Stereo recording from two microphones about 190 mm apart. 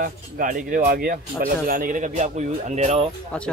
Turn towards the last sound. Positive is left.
turn(degrees=-35)  # may be behind; listen again after turning